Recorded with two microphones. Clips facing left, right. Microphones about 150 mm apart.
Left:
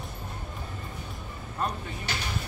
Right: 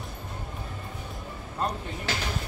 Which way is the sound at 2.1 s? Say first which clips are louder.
Right 4 dB; 90° right.